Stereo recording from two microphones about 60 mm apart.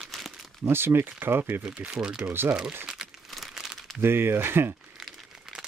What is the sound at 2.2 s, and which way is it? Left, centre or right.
Speech, right.